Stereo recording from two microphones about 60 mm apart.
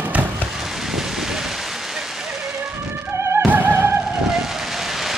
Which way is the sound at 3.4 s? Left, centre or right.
Right.